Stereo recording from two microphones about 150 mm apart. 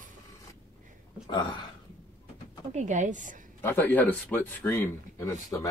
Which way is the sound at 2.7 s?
55° right (ahead or behind).